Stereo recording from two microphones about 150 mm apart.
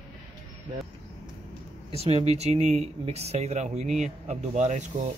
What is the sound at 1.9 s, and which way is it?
Speech, 45° right (ahead or behind).